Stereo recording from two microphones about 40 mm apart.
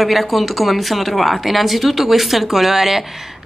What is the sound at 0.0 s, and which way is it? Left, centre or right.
Speech, centre.